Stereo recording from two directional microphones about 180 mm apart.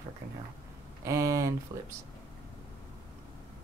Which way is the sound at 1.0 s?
15° right (ahead or behind).